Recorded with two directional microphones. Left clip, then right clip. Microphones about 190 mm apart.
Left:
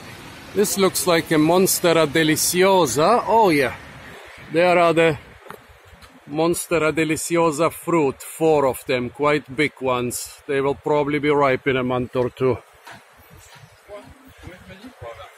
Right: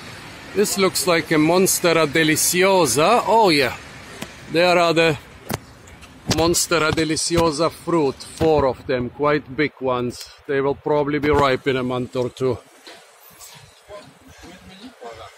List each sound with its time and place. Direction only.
0.7 s speech: 10° left (ahead or behind)
3.3 s speech: 20° right (ahead or behind)
6.4 s speech: 10° right (ahead or behind)
6.9 s speech: centre (ahead or behind)